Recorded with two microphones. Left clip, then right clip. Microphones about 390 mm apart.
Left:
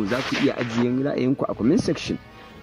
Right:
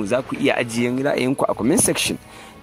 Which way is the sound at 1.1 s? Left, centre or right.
Right.